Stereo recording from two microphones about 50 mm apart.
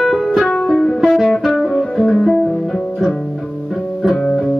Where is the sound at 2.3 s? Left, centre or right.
Centre.